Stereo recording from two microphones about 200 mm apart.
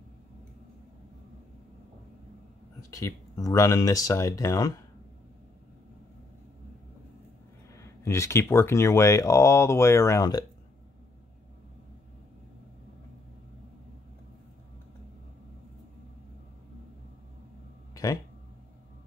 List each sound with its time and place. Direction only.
2.9 s speech: 15° left (ahead or behind)
7.7 s speech: 15° left (ahead or behind)
17.9 s a sound: 15° left (ahead or behind)